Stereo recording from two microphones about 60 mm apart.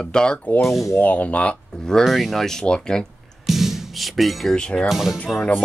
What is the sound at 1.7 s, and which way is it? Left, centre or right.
Speech, centre.